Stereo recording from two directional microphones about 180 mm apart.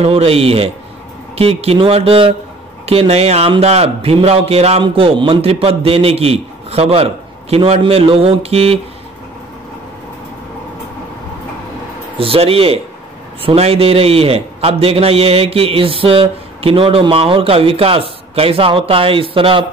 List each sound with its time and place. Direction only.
0.0 s a man's voice: 35° right (ahead or behind)
12.2 s a man's voice: 30° right (ahead or behind)